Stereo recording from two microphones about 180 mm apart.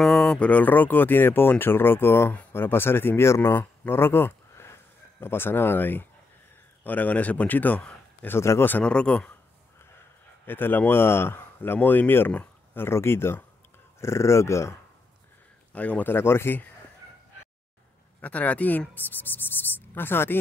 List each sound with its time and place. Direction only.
0.0 s speech: 5° left (ahead or behind)
10.4 s speech: 10° left (ahead or behind)
18.2 s speech: 10° left (ahead or behind)